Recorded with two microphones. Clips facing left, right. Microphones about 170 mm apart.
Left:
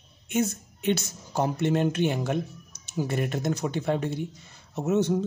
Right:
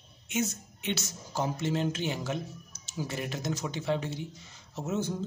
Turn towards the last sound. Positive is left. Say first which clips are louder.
# left 8 dB
turn(degrees=65)  # may be behind; listen again after turning